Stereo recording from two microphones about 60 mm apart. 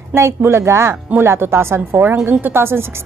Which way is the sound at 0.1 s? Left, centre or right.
Right.